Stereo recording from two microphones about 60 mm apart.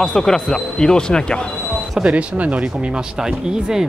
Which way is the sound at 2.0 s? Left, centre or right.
Right.